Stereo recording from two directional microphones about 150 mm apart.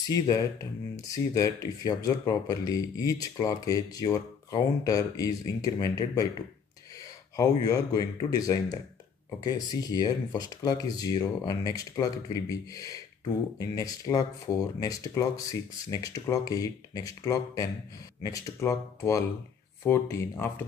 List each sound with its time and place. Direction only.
0.1 s speech: 25° left (ahead or behind)